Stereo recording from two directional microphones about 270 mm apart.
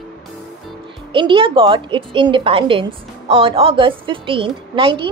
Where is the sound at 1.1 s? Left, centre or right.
Centre.